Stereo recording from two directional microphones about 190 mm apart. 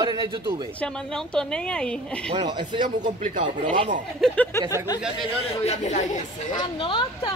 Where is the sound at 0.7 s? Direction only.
5° left (ahead or behind).